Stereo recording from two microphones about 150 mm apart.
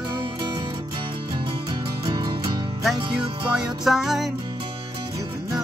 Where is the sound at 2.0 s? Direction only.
30° right (ahead or behind).